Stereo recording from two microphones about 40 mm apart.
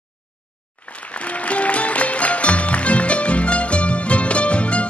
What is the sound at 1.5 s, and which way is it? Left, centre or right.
Music, left.